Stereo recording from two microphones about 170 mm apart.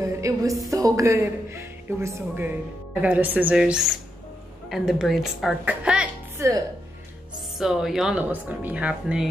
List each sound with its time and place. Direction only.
0.0 s a woman's voice: 20° right (ahead or behind)
7.5 s a woman's voice: centre (ahead or behind)